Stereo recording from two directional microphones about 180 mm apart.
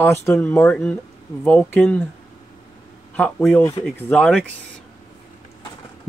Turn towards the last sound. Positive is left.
turn(degrees=5)  # may be behind; listen again after turning